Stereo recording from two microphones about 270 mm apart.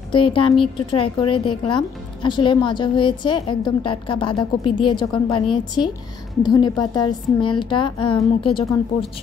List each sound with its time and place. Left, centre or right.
0.1 s a woman's voice: centre